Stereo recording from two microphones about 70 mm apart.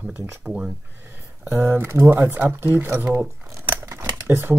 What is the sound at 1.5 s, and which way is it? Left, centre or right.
Speech, right.